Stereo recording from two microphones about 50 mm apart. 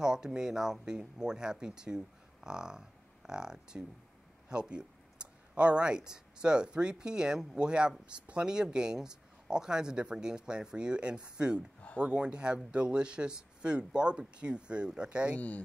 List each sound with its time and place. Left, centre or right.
0.0 s speech: centre
15.3 s speech: left